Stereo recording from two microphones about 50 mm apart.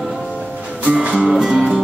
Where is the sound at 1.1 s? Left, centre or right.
Centre.